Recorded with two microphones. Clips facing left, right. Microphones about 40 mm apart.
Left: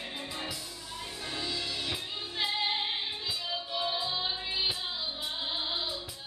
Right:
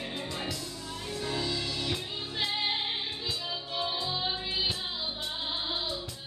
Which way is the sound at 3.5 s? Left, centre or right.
Centre.